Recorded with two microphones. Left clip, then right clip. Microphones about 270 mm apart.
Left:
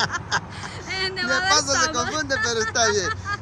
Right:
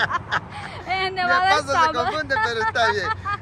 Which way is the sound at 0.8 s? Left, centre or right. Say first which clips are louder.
Right 4 dB; centre.